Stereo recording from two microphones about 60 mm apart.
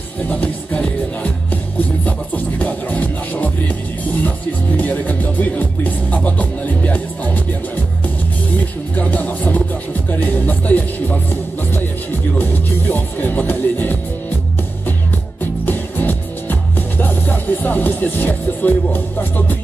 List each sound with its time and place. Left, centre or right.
0.7 s music: centre
2.0 s speech: left
12.4 s music: left
15.6 s music: left